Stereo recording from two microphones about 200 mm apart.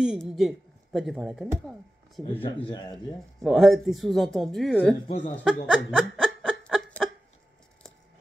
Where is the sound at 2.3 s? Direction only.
25° left (ahead or behind).